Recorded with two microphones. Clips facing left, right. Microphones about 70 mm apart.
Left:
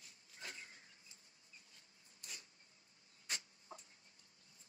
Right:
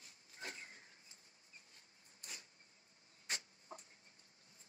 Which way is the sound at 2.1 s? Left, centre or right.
Right.